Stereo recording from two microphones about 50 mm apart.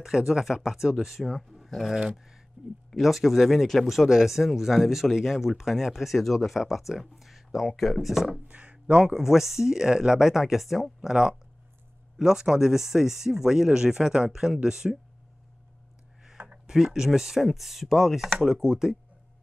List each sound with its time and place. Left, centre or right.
0.0 s speech: centre
2.1 s a sound: centre
3.0 s speech: centre
8.5 s speech: right
9.1 s speech: centre
16.3 s speech: centre